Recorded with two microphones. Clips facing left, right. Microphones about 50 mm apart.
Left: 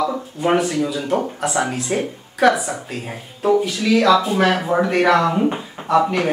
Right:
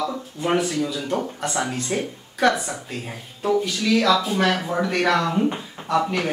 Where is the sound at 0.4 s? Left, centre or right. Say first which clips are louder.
Left 4 dB; centre.